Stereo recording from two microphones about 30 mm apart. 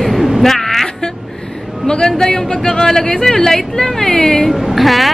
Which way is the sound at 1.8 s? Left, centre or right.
Left.